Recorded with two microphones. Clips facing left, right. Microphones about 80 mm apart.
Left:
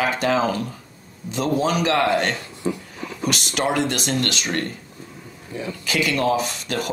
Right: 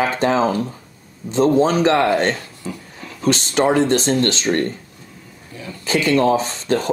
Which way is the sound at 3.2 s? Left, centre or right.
Right.